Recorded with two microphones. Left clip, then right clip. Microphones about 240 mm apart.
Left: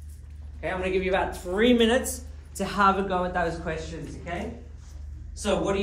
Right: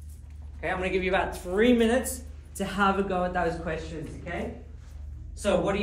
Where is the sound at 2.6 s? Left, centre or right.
Left.